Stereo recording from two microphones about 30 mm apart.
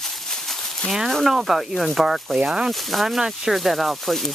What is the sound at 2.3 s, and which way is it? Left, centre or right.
Speech, right.